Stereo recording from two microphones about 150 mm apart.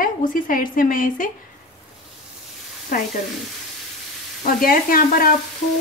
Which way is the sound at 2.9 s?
65° left (ahead or behind).